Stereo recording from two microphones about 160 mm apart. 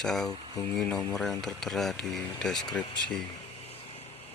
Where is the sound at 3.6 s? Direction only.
40° left (ahead or behind).